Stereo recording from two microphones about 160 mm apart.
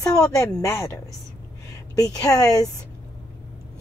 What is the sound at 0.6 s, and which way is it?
A woman's voice, 15° left (ahead or behind).